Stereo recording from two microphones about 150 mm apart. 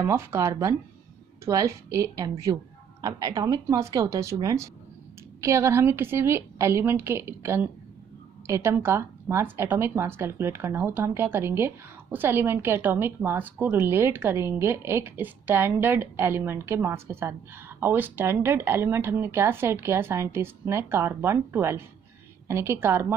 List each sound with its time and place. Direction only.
0.0 s speech: 15° right (ahead or behind)